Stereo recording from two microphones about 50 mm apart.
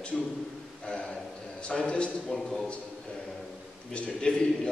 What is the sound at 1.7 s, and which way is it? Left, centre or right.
Speech, centre.